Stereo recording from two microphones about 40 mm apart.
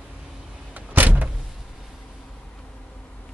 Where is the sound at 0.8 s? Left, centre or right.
Right.